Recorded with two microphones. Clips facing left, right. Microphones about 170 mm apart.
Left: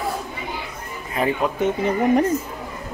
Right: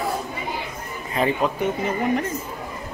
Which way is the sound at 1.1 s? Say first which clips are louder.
Even; 5° left (ahead or behind).